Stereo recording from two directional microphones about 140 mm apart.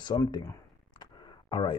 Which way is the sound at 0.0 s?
30° left (ahead or behind).